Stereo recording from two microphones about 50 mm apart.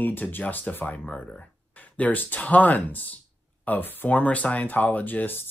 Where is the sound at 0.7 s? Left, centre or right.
Left.